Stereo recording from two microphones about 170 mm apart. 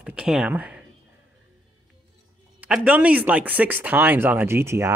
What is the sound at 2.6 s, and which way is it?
Speech, 10° right (ahead or behind).